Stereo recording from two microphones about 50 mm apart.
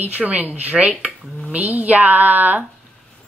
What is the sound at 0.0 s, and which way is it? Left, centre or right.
Speech, right.